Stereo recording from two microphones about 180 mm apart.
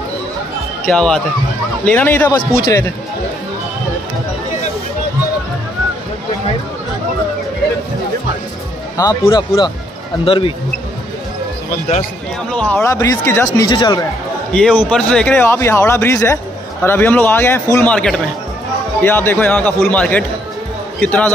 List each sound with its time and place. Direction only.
0.8 s speech: 5° left (ahead or behind)
8.9 s speech: 20° left (ahead or behind)
12.4 s speech: 5° left (ahead or behind); by 14.0 s 20° left (ahead or behind)
14.5 s speech: 5° left (ahead or behind)